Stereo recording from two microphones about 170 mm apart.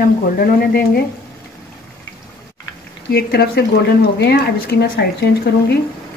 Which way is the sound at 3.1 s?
70° left (ahead or behind).